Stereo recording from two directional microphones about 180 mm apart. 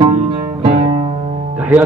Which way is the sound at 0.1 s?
30° right (ahead or behind).